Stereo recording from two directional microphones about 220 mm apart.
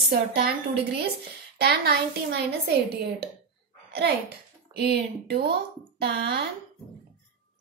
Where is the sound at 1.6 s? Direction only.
45° right (ahead or behind).